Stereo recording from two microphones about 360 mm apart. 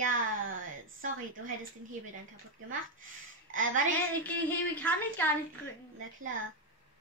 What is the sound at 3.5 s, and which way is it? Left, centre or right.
Speech, right.